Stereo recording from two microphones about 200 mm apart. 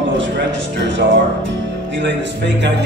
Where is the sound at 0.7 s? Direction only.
65° right (ahead or behind).